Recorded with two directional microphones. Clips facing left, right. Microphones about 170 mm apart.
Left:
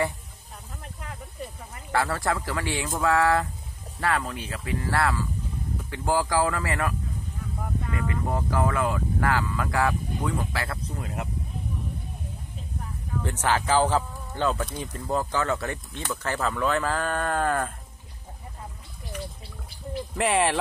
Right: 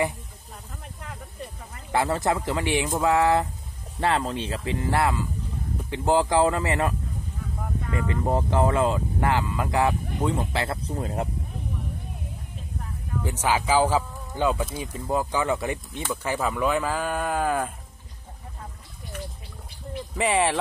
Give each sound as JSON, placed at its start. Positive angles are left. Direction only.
{"t": 1.9, "sound": "speech", "side_deg": -20}
{"t": 13.2, "sound": "speech", "side_deg": -10}
{"t": 20.2, "sound": "speech", "side_deg": 0}